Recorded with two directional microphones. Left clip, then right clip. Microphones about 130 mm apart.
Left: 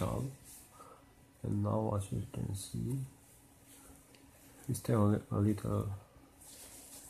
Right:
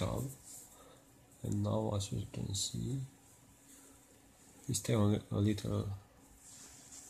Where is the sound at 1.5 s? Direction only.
Centre (ahead or behind).